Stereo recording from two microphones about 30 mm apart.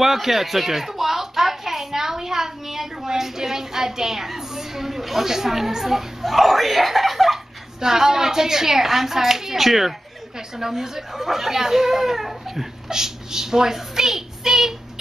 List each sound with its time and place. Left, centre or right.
0.0 s a child's voice: centre
6.3 s speech: centre
7.8 s speech: centre